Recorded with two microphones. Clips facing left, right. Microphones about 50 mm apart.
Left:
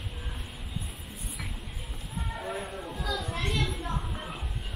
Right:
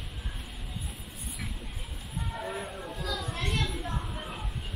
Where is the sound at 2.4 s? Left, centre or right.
Centre.